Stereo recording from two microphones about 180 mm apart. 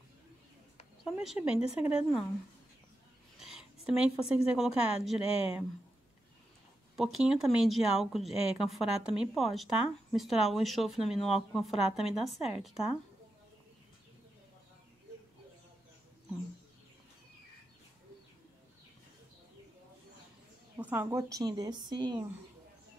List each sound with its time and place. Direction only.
1.0 s a woman's voice: 5° right (ahead or behind)
3.3 s speech: 5° right (ahead or behind)
7.2 s a woman's voice: centre (ahead or behind)
12.4 s speech: 35° left (ahead or behind)
20.7 s a woman's voice: 10° right (ahead or behind)